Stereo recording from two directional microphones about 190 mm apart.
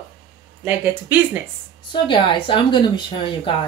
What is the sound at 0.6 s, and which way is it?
Speech, 10° right (ahead or behind).